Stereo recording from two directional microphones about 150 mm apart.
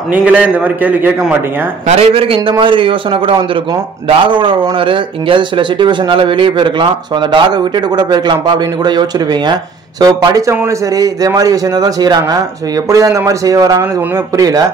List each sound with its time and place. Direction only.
0.1 s a man's voice: 10° right (ahead or behind)
1.9 s speech: 40° right (ahead or behind); by 14.6 s 25° right (ahead or behind)